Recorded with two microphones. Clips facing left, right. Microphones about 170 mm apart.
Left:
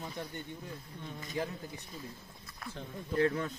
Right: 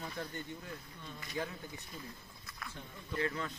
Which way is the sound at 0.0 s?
20° left (ahead or behind).